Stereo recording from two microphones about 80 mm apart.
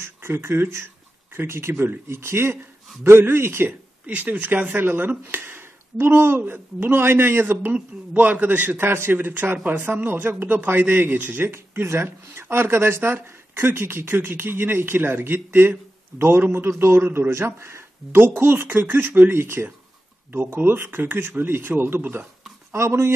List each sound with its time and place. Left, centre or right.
0.0 s a man's voice: right